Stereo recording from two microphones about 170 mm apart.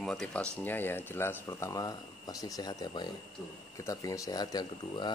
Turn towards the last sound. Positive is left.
turn(degrees=25)  # may be behind; listen again after turning